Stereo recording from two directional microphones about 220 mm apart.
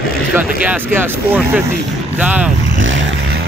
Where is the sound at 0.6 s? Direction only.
10° right (ahead or behind).